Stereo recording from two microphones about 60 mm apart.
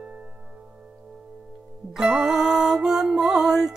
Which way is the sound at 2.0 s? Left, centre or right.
Centre.